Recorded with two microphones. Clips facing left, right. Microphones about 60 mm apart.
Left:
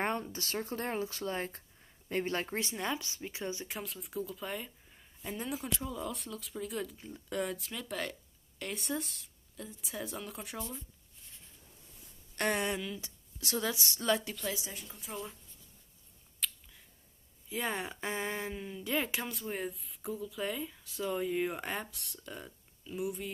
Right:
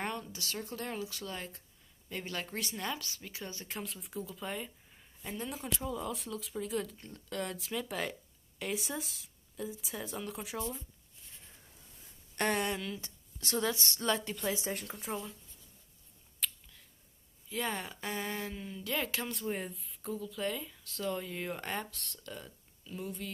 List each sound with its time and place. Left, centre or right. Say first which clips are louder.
0.0 s speech: left 4 dB; left
3.6 s a woman's voice: even; centre
7.2 s speech: left 3 dB; centre
7.4 s a woman's voice: right 1 dB; centre
12.4 s a woman's voice: even; centre
14.7 s a woman's voice: right 8 dB; right
16.4 s a sound: even; centre
17.5 s speech: left 1 dB; centre
18.6 s speech: left 3 dB; centre
19.2 s speech: right 1 dB; centre